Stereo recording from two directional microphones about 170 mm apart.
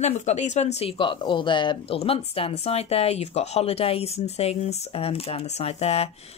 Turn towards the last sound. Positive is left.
turn(degrees=35)  # may be behind; listen again after turning